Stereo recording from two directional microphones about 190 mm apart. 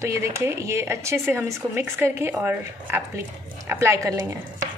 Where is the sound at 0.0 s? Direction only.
15° right (ahead or behind).